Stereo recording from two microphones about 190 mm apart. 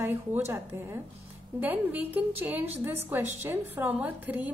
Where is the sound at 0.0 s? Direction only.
10° right (ahead or behind).